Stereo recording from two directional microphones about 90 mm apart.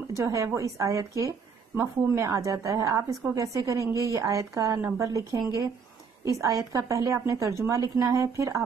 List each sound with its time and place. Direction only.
0.1 s a woman's voice: 35° right (ahead or behind)